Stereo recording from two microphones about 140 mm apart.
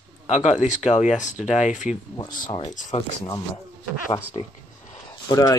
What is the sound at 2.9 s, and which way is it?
Speech, 55° left (ahead or behind).